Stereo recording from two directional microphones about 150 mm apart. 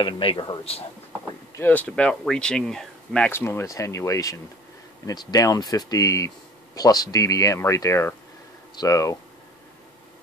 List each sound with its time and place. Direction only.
0.0 s speech: 35° left (ahead or behind)
1.6 s speech: 10° left (ahead or behind)
3.3 s speech: 15° left (ahead or behind)